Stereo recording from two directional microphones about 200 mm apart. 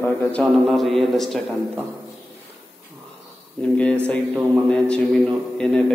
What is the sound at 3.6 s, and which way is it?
A man's voice, 5° left (ahead or behind).